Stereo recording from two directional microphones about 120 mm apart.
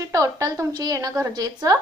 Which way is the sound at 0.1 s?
30° right (ahead or behind).